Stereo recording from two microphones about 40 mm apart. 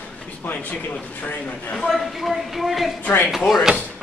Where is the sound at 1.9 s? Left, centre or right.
Centre.